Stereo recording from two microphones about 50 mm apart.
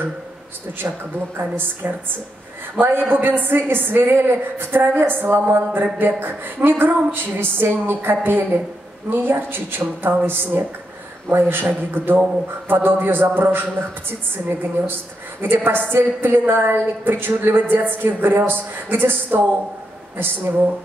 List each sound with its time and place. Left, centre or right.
1.4 s a woman's voice: right
15.4 s a woman's voice: right